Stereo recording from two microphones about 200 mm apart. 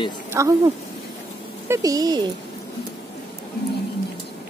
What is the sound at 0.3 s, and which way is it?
Speech, 15° right (ahead or behind).